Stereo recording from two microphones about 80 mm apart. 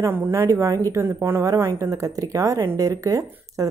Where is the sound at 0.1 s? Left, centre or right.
Right.